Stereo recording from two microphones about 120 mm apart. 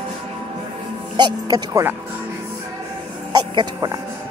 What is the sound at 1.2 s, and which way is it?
Music, 30° right (ahead or behind).